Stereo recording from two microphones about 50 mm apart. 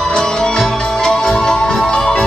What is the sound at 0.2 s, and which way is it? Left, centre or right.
Music, centre.